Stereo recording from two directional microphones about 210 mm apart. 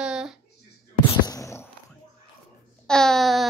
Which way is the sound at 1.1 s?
15° left (ahead or behind).